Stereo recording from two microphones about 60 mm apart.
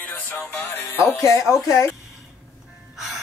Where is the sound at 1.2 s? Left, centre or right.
Left.